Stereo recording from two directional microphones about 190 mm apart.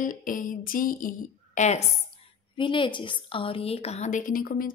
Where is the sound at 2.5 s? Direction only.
25° left (ahead or behind); by 4.7 s 50° left (ahead or behind).